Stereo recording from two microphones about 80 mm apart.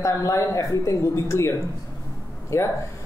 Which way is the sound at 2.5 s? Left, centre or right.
Left.